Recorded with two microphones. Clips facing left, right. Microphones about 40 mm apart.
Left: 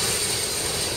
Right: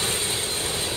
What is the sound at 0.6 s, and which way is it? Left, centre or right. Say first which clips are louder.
Vehicle: even; centre.